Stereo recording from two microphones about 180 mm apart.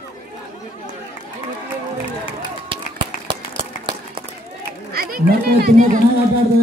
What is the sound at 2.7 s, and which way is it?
Run, 30° right (ahead or behind).